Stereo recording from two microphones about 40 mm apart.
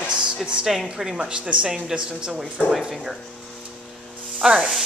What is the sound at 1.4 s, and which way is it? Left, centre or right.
A woman's voice, right.